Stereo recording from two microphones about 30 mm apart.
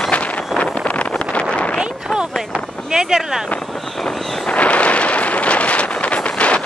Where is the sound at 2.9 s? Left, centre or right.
Right.